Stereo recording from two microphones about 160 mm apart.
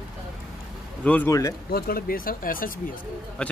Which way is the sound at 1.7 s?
70° left (ahead or behind).